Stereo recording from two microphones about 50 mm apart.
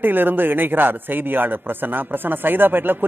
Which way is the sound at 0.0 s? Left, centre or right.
Right.